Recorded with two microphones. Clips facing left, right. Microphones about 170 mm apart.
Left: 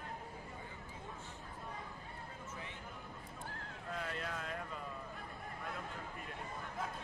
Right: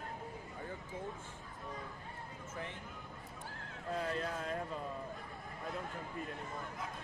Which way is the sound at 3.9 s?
35° right (ahead or behind).